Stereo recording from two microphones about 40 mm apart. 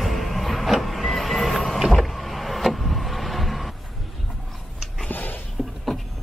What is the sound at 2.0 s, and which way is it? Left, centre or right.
Vehicle, centre.